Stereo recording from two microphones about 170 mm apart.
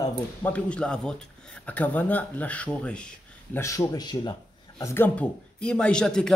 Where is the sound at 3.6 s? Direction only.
20° left (ahead or behind).